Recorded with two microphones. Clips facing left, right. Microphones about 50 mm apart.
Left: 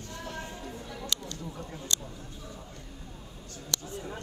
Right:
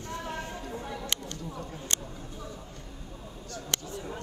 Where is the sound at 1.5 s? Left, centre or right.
Right.